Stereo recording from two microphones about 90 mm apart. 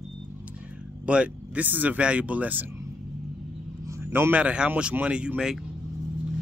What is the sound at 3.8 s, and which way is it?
Speech, 25° right (ahead or behind).